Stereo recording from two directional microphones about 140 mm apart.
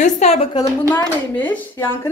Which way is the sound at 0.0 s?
50° left (ahead or behind).